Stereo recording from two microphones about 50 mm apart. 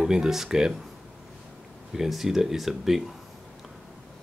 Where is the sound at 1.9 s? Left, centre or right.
Centre.